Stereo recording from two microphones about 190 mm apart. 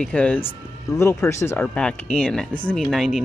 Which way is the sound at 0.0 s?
5° left (ahead or behind).